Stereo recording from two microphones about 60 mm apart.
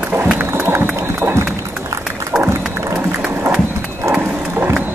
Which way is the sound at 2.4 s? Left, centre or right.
Right.